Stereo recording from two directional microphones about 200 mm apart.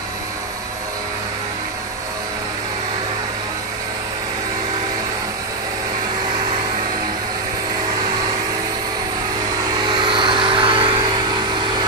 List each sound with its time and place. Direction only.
9.8 s vehicle: 25° right (ahead or behind)